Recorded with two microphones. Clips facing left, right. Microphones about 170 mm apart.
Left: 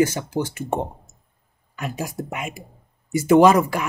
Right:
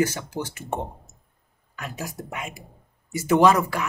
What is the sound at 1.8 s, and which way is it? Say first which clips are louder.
Speech: left 5 dB; 15° left (ahead or behind).